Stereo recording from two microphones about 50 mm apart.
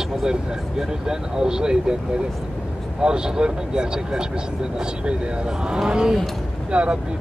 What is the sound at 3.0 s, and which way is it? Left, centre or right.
Speech, centre.